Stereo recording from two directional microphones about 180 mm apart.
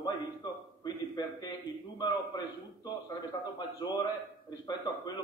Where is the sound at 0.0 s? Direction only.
25° left (ahead or behind).